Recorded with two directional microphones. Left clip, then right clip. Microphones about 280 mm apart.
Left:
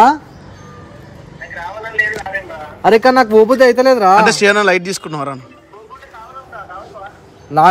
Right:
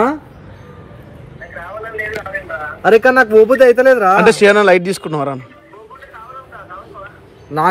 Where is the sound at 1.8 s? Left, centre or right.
Left.